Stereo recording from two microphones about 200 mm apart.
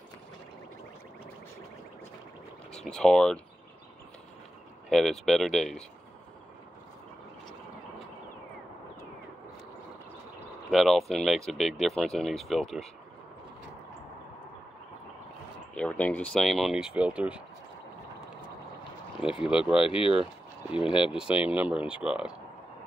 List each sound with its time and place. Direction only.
2.7 s speech: 5° left (ahead or behind)
4.8 s speech: centre (ahead or behind)
10.7 s speech: centre (ahead or behind)
15.7 s speech: 5° left (ahead or behind)
19.2 s speech: 5° right (ahead or behind)
19.8 s speech: 25° left (ahead or behind)
21.1 s speech: 5° right (ahead or behind)